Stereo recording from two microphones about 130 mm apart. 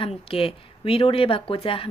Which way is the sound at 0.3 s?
45° left (ahead or behind).